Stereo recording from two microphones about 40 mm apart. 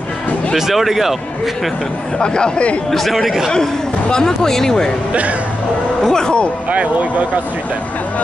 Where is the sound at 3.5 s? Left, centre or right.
Centre.